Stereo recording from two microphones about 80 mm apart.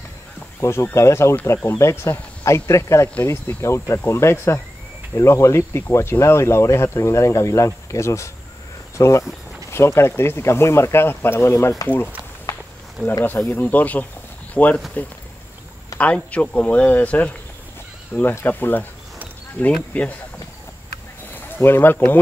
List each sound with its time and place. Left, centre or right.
0.6 s speech: left
12.5 s walk: left
13.5 s speech: left
16.0 s speech: centre
18.3 s speech: left
21.3 s speech: left